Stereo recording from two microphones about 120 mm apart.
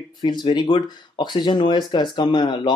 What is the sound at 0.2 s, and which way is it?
Speech, 40° left (ahead or behind).